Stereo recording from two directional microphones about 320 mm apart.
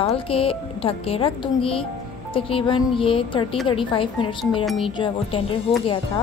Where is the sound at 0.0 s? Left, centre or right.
Centre.